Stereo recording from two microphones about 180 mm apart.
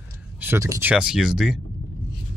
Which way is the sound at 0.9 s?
5° right (ahead or behind).